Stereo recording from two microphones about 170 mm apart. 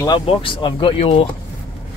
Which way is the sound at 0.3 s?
30° left (ahead or behind).